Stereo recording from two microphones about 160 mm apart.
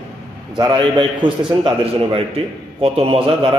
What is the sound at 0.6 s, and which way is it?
A man's voice, 30° right (ahead or behind).